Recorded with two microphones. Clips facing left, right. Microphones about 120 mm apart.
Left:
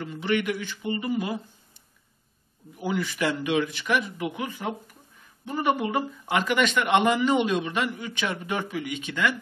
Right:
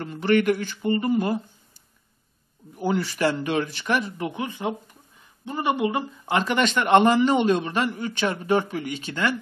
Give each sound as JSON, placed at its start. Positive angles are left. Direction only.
{"t": 0.0, "sound": "speech", "side_deg": -40}
{"t": 2.8, "sound": "speech", "side_deg": -35}